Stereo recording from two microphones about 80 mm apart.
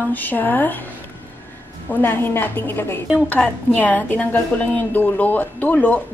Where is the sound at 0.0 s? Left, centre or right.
Left.